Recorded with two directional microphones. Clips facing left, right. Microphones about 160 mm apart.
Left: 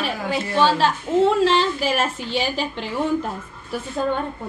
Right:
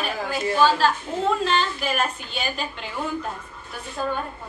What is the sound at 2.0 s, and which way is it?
Speech, 90° left.